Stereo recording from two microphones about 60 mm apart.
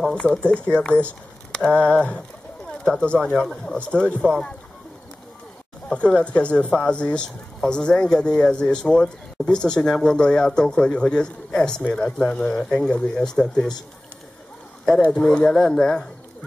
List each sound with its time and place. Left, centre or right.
0.1 s speech: centre
2.8 s speech: centre
3.7 s speech: centre
5.9 s speech: centre
15.3 s speech: centre